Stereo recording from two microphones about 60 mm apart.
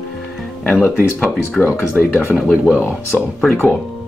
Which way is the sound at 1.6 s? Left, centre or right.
Left.